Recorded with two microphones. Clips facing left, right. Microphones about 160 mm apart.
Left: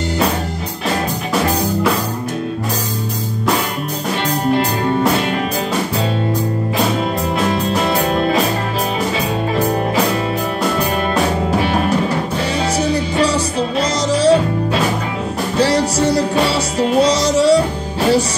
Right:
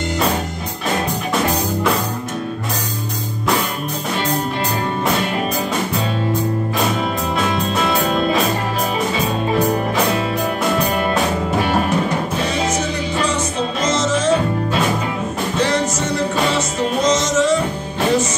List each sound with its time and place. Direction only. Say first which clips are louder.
12.7 s music: left 4 dB; 35° left (ahead or behind)
15.5 s music: left 4 dB; 35° left (ahead or behind)